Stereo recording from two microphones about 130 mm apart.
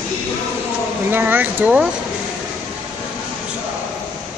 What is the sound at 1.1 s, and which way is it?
Speech, 15° right (ahead or behind).